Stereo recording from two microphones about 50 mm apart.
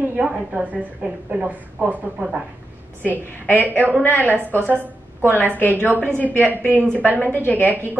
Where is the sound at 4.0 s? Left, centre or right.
Left.